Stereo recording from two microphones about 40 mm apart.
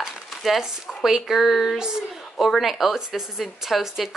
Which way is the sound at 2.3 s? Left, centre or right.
Centre.